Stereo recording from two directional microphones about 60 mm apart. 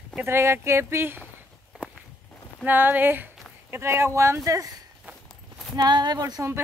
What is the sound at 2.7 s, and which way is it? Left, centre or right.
Speech, right.